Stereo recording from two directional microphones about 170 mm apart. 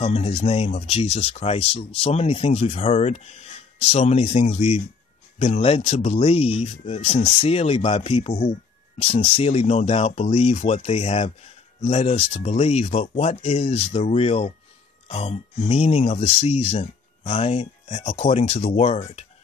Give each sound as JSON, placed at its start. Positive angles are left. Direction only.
{"t": 0.0, "sound": "speech", "side_deg": 35}